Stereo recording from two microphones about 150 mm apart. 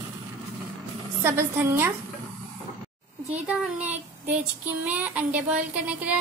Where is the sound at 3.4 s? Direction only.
10° right (ahead or behind).